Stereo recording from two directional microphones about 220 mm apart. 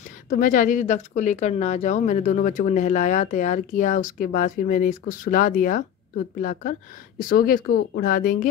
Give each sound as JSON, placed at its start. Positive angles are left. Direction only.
{"t": 0.4, "sound": "a woman's voice", "side_deg": 35}